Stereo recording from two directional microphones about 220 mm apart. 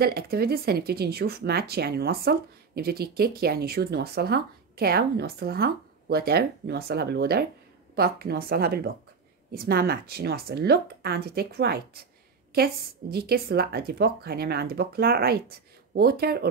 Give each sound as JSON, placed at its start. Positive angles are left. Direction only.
{"t": 0.0, "sound": "speech", "side_deg": -45}